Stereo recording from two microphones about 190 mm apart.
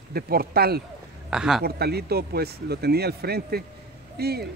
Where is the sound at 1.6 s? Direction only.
55° right (ahead or behind).